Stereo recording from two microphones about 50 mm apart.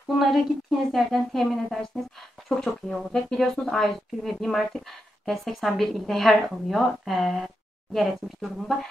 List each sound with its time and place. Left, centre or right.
0.2 s a woman's voice: centre
3.1 s speech: left
3.3 s a woman's voice: centre